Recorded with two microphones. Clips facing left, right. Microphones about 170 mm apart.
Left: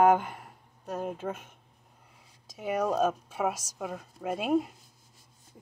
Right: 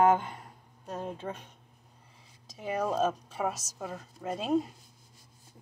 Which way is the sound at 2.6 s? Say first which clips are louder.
Left 2 dB; 10° left (ahead or behind).